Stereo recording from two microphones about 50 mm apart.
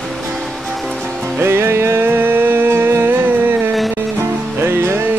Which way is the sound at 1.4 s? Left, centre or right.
Right.